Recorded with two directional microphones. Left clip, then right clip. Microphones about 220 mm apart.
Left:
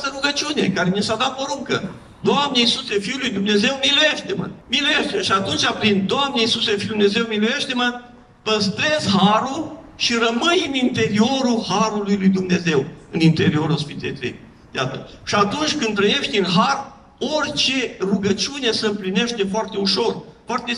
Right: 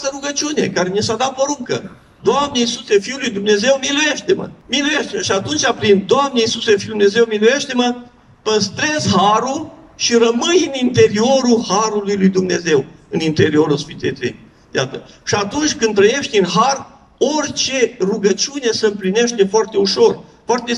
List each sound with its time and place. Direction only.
0.0 s a man's voice: 30° right (ahead or behind)